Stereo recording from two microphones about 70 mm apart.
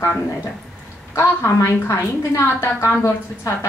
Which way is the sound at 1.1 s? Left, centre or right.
Left.